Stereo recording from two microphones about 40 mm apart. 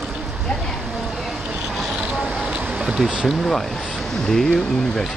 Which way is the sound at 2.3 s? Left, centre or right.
Right.